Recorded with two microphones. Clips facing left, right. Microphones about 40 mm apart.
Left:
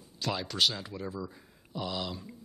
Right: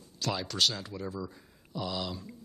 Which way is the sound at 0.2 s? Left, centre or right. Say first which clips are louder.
Even; centre.